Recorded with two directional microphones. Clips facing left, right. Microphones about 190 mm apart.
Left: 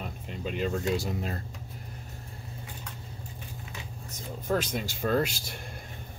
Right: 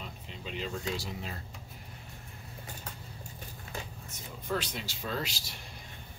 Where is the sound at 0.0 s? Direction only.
50° left (ahead or behind).